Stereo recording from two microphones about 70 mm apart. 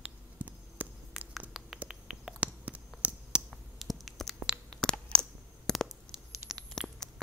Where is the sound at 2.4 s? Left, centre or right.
Right.